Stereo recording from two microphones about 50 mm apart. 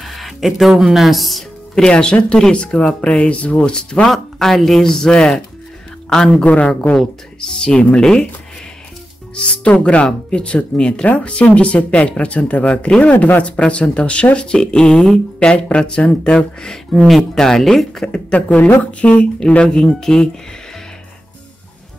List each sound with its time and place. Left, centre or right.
0.0 s speech: centre
1.8 s speech: centre
3.7 s speech: centre
4.1 s speech: centre
6.4 s speech: left
7.0 s speech: centre
9.3 s speech: centre
18.1 s speech: left
19.7 s speech: centre